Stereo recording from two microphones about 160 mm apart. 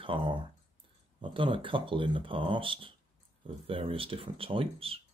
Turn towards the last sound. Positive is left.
turn(degrees=-35)  # may be behind; listen again after turning